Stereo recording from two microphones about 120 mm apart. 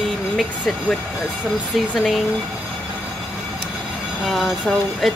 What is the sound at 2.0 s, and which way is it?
Speech, centre (ahead or behind).